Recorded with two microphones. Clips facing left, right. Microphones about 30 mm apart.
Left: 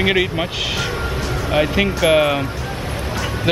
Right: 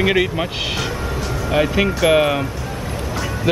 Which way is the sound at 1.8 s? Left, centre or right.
Centre.